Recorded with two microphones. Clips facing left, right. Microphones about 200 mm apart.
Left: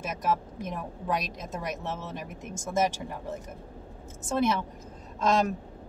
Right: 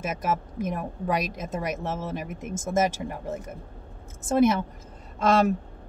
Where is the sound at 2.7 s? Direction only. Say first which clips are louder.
Right 3 dB; 50° right (ahead or behind).